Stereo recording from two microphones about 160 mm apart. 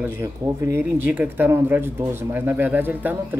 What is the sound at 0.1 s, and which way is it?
Speech, 15° right (ahead or behind).